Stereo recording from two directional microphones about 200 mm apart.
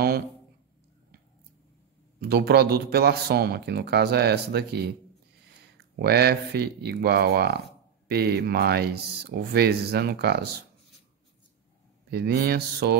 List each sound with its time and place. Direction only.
2.1 s speech: 55° right (ahead or behind)
12.1 s speech: 50° right (ahead or behind)